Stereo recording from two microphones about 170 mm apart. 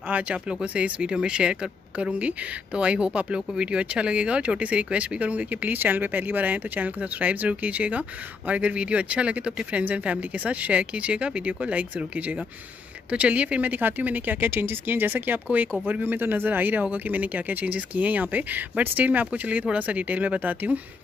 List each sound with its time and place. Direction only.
0.1 s speech: 5° right (ahead or behind)